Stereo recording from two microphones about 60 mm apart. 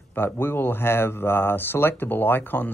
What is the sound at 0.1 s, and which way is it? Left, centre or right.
Speech, left.